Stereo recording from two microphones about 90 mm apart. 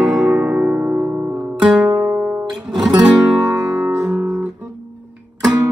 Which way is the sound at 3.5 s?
40° right (ahead or behind).